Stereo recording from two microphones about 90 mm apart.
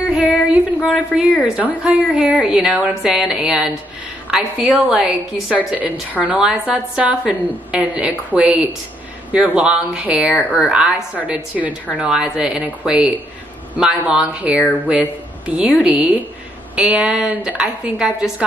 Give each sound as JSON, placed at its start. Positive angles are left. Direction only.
{"t": 0.0, "sound": "child singing", "side_deg": -15}
{"t": 0.7, "sound": "a woman's voice", "side_deg": 20}
{"t": 1.4, "sound": "a woman's voice", "side_deg": -15}